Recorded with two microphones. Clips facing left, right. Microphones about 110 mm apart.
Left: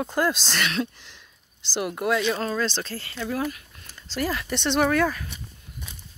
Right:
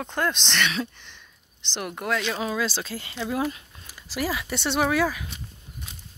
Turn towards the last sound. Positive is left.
turn(degrees=-5)  # may be behind; listen again after turning